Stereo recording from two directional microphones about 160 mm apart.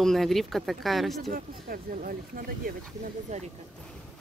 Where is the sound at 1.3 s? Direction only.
60° right (ahead or behind).